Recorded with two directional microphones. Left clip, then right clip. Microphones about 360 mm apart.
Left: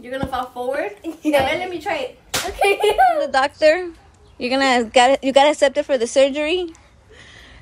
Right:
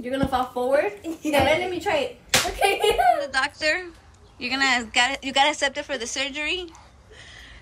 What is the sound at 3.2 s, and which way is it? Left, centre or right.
A woman's voice, centre.